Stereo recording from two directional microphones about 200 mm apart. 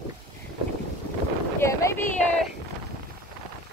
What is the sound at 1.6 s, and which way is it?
Speech, 15° left (ahead or behind).